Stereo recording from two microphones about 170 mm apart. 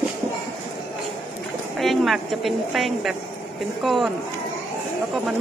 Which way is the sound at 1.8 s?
Centre (ahead or behind).